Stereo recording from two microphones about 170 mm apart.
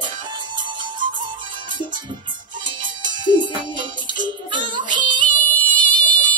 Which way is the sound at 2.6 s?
25° right (ahead or behind).